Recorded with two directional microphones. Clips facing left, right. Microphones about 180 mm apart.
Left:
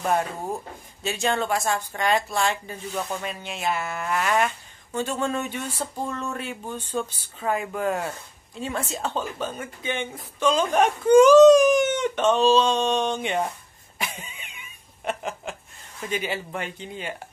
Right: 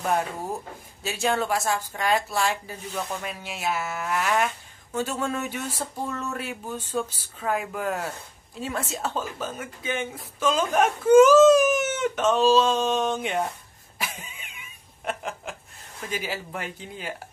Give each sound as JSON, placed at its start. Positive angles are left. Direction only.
{"t": 1.0, "sound": "speech", "side_deg": -5}
{"t": 13.9, "sound": "a sound", "side_deg": 0}
{"t": 16.0, "sound": "speech", "side_deg": 0}